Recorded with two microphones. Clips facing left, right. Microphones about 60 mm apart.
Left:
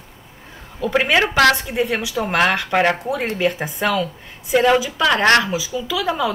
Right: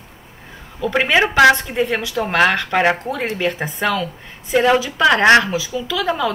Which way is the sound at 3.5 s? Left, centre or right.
Right.